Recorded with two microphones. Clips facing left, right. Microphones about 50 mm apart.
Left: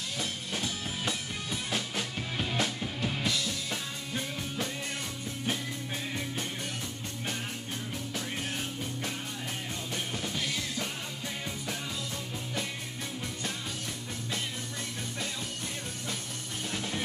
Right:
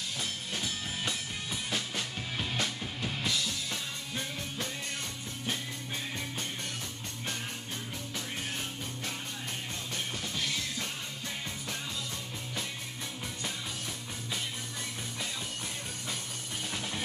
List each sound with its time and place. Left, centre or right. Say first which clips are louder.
0.2 s music: left 3 dB; centre